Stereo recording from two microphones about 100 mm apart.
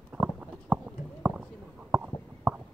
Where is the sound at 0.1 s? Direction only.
15° right (ahead or behind).